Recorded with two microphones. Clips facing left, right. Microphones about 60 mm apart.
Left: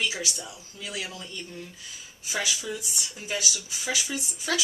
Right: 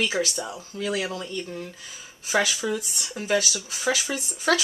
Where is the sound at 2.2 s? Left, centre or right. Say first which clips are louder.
Right 7 dB; right.